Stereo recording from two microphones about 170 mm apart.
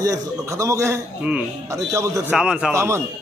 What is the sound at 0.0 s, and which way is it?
Speech, 20° right (ahead or behind).